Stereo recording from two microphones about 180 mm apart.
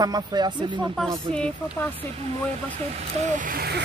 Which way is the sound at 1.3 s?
10° left (ahead or behind).